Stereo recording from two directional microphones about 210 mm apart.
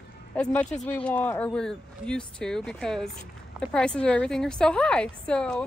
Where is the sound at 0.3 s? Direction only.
5° left (ahead or behind).